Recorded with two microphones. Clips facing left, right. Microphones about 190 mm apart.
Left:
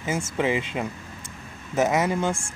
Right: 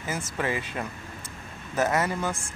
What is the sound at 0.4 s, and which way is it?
Speech, 15° left (ahead or behind).